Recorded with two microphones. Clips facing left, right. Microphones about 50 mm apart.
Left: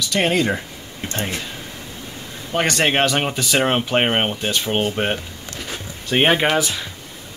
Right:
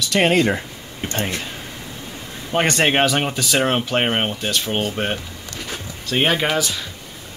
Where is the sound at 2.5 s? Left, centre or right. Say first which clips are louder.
Right 1 dB; right.